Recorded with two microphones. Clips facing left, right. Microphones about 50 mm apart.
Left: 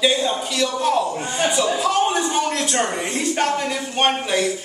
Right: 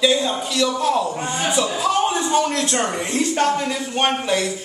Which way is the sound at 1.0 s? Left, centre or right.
Centre.